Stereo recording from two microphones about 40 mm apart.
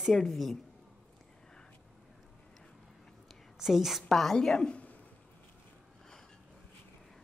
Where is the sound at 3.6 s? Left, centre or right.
Centre.